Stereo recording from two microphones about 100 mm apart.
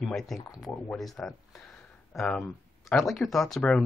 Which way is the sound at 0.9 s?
Centre (ahead or behind).